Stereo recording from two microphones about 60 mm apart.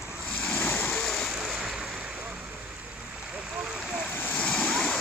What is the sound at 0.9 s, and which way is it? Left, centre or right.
Splash, centre.